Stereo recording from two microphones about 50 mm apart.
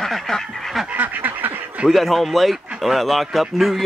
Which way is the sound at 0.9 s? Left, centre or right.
Right.